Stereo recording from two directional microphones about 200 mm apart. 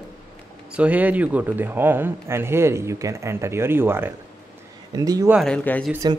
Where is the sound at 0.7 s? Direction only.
10° right (ahead or behind).